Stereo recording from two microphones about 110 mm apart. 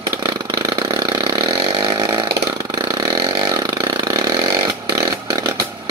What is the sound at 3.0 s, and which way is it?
Chainsaw, 35° right (ahead or behind).